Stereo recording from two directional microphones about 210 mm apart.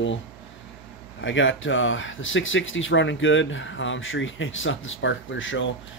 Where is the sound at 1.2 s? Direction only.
65° left (ahead or behind).